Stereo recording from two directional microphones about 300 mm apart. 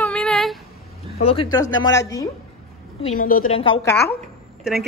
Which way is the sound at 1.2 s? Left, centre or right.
Centre.